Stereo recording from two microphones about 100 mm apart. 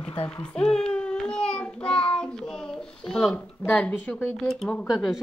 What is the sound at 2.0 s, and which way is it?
A child's voice, 10° left (ahead or behind).